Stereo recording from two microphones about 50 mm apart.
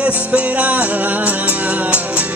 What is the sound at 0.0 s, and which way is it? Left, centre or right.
Music, right.